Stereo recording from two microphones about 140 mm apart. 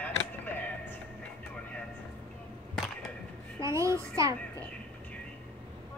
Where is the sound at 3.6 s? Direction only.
20° right (ahead or behind).